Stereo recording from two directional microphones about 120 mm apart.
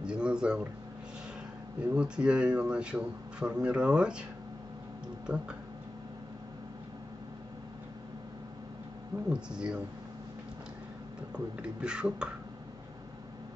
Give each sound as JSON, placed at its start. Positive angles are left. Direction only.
{"t": 0.0, "sound": "a sound", "side_deg": -10}
{"t": 1.8, "sound": "speech", "side_deg": -10}
{"t": 5.2, "sound": "speech", "side_deg": -10}
{"t": 9.3, "sound": "speech", "side_deg": -5}
{"t": 11.3, "sound": "speech", "side_deg": -10}